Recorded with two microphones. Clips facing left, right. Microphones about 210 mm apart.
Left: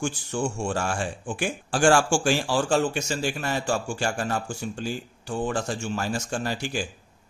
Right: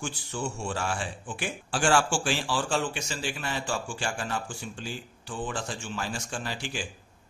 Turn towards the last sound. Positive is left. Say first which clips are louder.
# left 6 dB
turn(degrees=45)  # may be behind; listen again after turning